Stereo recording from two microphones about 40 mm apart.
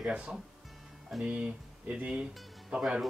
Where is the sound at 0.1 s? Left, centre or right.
Right.